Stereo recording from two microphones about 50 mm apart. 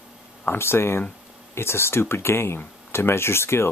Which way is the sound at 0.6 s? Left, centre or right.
Left.